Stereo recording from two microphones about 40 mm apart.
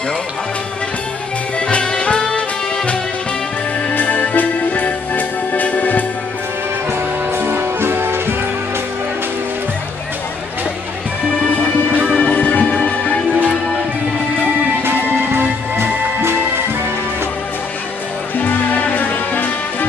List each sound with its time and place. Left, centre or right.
1.7 s music: left
3.9 s music: left
7.3 s music: right
12.4 s music: left
12.7 s music: left
14.8 s music: right
18.4 s music: left